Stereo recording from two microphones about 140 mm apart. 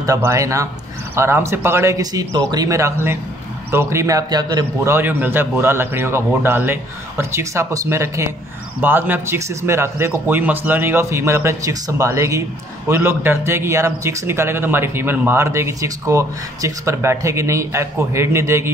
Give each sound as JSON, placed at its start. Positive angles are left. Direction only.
{"t": 0.0, "sound": "a man's voice", "side_deg": -20}